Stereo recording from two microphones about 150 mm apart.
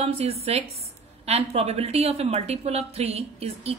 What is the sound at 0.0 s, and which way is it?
A woman's voice, 40° right (ahead or behind).